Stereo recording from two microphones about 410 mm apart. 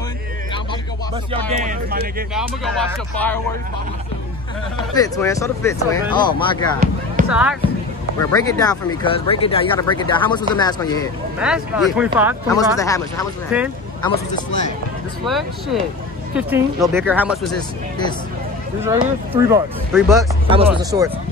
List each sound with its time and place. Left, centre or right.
1.1 s speech: centre
2.3 s speech: centre
4.9 s speech: centre
7.2 s a sound: centre
8.2 s speech: centre
11.3 s speech: centre
12.4 s speech: centre
15.2 s speech: centre
18.8 s speech: centre
20.4 s speech: centre